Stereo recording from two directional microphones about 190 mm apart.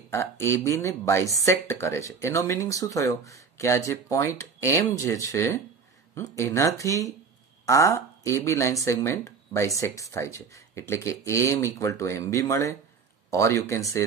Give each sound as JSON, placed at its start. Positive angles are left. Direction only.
{"t": 0.1, "sound": "speech", "side_deg": 15}